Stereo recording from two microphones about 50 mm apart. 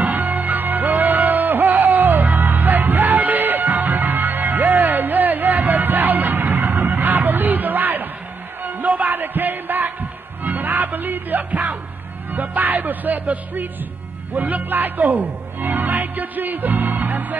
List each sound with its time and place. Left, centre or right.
0.0 s music: right